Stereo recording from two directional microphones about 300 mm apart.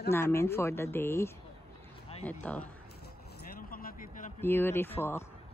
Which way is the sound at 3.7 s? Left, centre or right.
Left.